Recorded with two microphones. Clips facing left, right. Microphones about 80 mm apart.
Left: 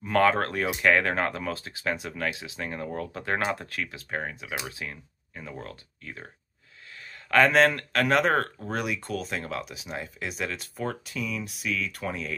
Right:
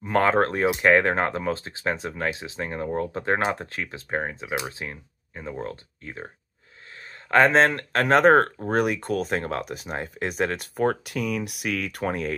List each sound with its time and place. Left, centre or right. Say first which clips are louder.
0.1 s speech: right 2 dB; right